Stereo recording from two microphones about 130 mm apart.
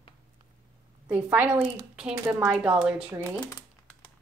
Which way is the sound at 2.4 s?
10° right (ahead or behind).